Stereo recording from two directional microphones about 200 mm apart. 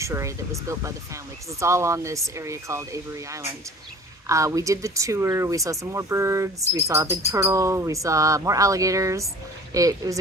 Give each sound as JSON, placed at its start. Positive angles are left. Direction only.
{"t": 0.0, "sound": "speech", "side_deg": -15}